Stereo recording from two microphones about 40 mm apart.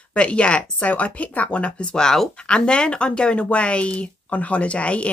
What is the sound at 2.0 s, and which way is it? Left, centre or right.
Speech, centre.